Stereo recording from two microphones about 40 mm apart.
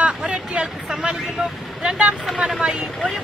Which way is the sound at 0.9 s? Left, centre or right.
Centre.